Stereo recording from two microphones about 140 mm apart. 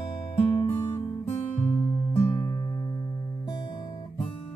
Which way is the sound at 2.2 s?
25° left (ahead or behind).